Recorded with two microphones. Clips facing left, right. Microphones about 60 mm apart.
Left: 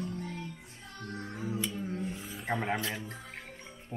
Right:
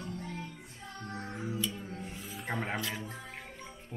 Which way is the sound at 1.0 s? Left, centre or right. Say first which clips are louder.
Even; centre.